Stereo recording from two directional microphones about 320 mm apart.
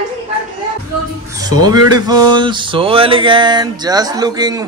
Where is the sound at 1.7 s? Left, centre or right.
Centre.